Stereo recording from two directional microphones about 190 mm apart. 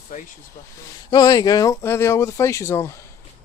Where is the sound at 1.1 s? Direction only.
20° left (ahead or behind).